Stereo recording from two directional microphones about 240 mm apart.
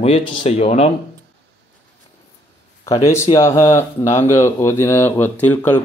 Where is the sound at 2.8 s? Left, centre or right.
Centre.